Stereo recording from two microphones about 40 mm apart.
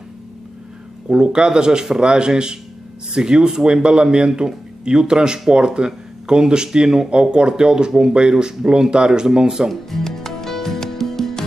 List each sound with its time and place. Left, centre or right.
1.0 s speech: right
9.7 s music: centre